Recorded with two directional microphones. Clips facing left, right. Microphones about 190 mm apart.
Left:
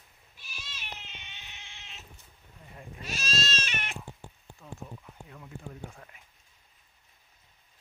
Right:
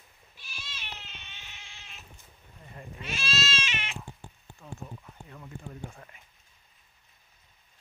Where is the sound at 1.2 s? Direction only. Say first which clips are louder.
Even; 20° left (ahead or behind).